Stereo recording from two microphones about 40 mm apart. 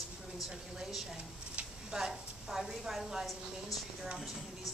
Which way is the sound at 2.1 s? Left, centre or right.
Centre.